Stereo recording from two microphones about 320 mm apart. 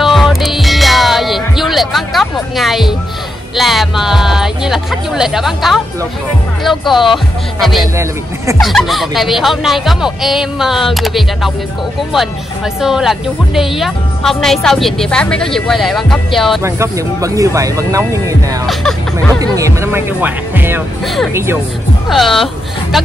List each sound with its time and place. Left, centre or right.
0.0 s music: centre
3.5 s speech: centre
12.8 s speech: centre